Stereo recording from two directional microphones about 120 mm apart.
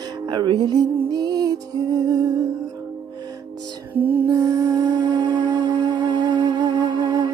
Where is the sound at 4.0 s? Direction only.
15° right (ahead or behind).